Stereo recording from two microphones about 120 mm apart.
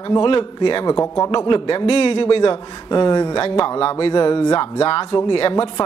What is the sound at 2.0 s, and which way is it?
Speech, 50° left (ahead or behind).